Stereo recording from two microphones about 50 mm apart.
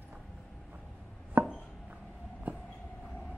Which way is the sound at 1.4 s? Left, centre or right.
Right.